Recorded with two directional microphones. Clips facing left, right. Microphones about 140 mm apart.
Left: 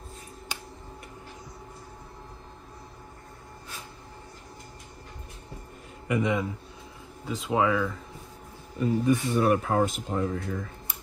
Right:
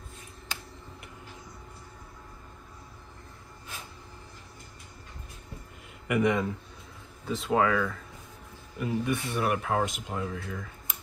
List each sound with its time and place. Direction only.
6.0 s a man's voice: 25° left (ahead or behind)
8.7 s speech: 35° left (ahead or behind)